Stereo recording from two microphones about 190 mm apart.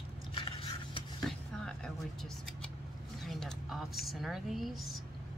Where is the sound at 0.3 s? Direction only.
25° left (ahead or behind).